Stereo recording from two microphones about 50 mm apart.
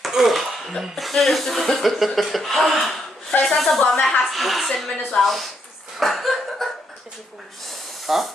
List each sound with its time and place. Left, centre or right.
0.0 s a sound: centre
0.9 s speech: centre
3.8 s a woman's voice: centre
4.2 s a woman's voice: centre
5.9 s laughter: centre
8.1 s speech: centre